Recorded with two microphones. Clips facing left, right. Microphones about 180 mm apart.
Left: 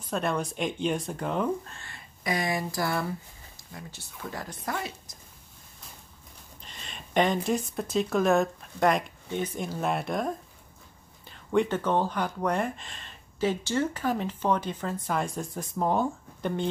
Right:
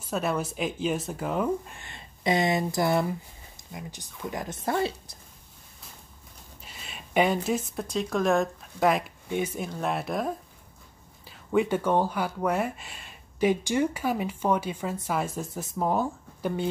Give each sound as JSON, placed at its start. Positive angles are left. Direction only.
{"t": 0.1, "sound": "speech", "side_deg": -5}
{"t": 1.8, "sound": "speech", "side_deg": -20}
{"t": 6.6, "sound": "speech", "side_deg": -5}